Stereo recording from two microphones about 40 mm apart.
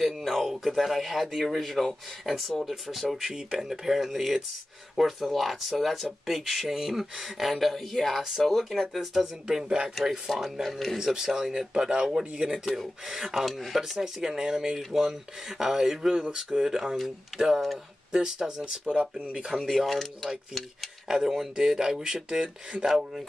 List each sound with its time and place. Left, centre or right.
0.0 s speech: centre
8.2 s speech: centre
8.5 s speech: centre
9.1 s speech: centre
11.0 s speech: centre
12.5 s speech: centre
13.3 s speech: centre
14.8 s speech: centre
18.1 s speech: centre
18.9 s speech: right
19.5 s speech: centre
21.5 s speech: centre